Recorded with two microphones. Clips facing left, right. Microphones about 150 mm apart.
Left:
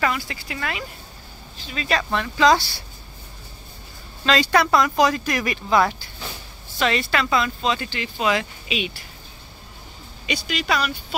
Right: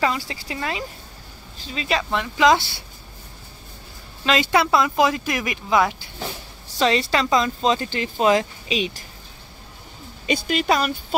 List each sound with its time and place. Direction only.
0.0 s speech: 30° right (ahead or behind)
4.2 s speech: 20° right (ahead or behind)
6.8 s speech: 30° right (ahead or behind)
10.2 s speech: 50° right (ahead or behind)